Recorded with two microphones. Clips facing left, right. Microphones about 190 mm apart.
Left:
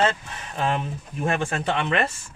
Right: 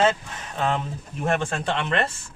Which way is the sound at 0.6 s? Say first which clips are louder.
Even; 10° left (ahead or behind).